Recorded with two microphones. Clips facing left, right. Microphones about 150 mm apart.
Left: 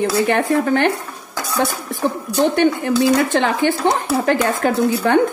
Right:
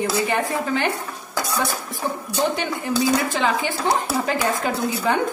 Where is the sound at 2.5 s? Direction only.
60° left (ahead or behind).